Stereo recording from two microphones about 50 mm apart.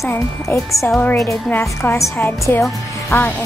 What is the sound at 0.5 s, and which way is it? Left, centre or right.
A woman's voice, left.